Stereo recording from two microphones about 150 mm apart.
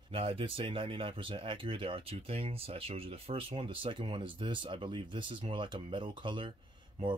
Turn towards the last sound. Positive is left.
turn(degrees=-35)  # may be behind; listen again after turning